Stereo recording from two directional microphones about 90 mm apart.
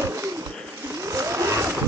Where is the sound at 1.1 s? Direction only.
35° right (ahead or behind).